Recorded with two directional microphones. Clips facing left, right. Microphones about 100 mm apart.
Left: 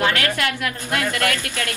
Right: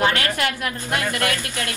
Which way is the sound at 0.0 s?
25° right (ahead or behind).